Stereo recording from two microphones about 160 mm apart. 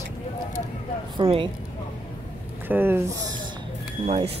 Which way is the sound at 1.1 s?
35° right (ahead or behind).